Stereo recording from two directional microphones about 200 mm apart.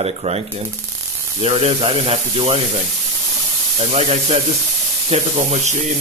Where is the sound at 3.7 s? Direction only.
30° right (ahead or behind).